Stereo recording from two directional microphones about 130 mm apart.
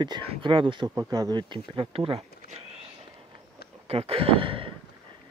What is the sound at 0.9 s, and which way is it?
Speech, 30° right (ahead or behind).